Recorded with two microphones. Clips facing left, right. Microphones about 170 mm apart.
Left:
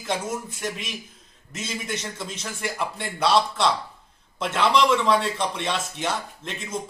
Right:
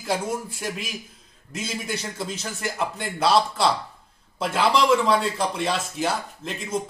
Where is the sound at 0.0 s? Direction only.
5° right (ahead or behind).